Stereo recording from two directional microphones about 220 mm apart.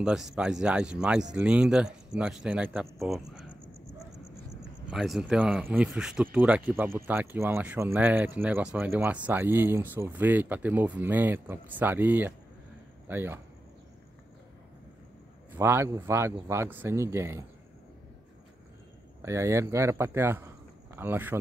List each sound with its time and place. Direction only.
0.0 s speech: 5° right (ahead or behind)
4.9 s speech: centre (ahead or behind)
15.5 s speech: 10° right (ahead or behind)
19.2 s speech: 15° right (ahead or behind)